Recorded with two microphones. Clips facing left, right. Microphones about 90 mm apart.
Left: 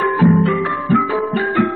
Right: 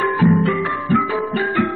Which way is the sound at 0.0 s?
25° left (ahead or behind).